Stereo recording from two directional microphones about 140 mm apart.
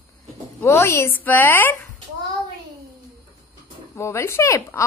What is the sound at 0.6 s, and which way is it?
A woman's voice, 15° left (ahead or behind).